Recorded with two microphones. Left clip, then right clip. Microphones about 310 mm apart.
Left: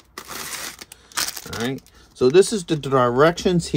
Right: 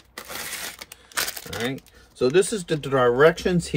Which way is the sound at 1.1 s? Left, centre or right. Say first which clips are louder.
Left 2 dB; centre.